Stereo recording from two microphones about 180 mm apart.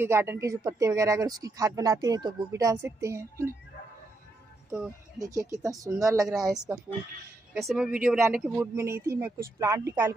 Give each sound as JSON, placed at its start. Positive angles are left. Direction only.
{"t": 0.0, "sound": "speech", "side_deg": -15}
{"t": 4.6, "sound": "speech", "side_deg": -5}
{"t": 5.2, "sound": "speech", "side_deg": -20}
{"t": 6.5, "sound": "speech", "side_deg": -5}